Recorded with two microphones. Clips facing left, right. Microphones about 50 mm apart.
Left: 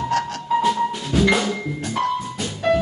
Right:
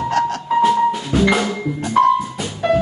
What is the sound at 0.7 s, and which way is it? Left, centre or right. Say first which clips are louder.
Music: right 5 dB; centre.